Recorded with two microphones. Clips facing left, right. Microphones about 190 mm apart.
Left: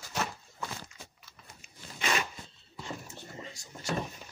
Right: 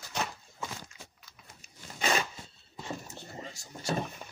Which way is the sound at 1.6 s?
35° right (ahead or behind).